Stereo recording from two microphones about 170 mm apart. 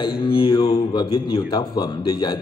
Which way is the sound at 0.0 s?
25° left (ahead or behind).